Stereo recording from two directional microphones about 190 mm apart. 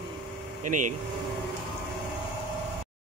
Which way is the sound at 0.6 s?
40° right (ahead or behind).